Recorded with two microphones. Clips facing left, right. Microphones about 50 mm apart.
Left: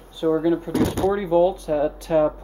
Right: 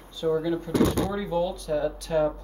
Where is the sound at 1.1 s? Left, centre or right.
Left.